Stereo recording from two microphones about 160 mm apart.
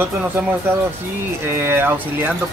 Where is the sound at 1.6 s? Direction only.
15° right (ahead or behind).